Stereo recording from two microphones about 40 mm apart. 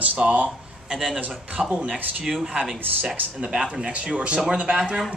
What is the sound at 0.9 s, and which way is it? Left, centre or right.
Speech, centre.